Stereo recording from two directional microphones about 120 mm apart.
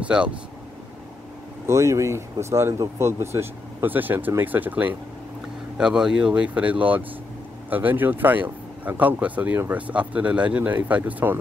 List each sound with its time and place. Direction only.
0.0 s speech: 10° right (ahead or behind)
1.7 s speech: 25° right (ahead or behind)